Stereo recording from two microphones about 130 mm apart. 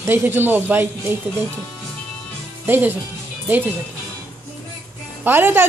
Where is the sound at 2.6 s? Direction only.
15° right (ahead or behind).